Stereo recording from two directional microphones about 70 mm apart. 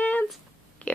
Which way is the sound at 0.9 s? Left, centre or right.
Left.